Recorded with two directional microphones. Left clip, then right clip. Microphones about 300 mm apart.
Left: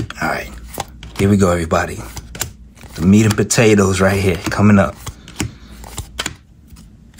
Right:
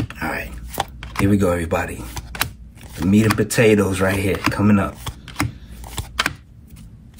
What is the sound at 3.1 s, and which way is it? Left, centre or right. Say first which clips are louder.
Speech: left 2 dB; centre.